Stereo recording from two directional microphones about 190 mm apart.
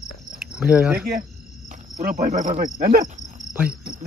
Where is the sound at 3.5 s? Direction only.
5° right (ahead or behind).